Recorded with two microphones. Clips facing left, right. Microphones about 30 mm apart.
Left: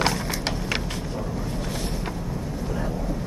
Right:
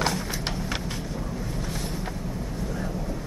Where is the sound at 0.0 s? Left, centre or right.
Left.